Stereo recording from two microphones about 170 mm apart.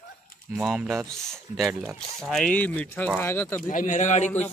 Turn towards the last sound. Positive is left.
turn(degrees=45)  # may be behind; listen again after turning